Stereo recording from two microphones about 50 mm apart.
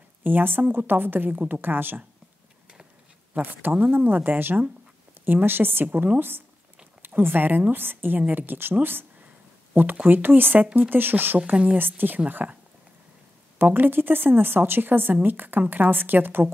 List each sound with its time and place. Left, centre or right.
0.2 s a woman's voice: right
3.3 s a woman's voice: right
10.0 s a woman's voice: right
11.3 s speech: right
11.7 s speech: right
12.4 s speech: right
13.6 s a woman's voice: right